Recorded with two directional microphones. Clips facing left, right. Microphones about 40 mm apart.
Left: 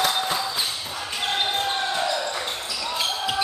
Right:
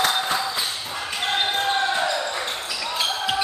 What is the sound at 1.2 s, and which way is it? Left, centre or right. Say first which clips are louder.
Basketball bounce: right 2 dB; centre.